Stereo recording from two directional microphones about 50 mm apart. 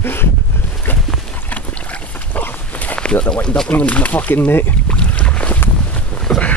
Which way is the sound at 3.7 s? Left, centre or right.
Left.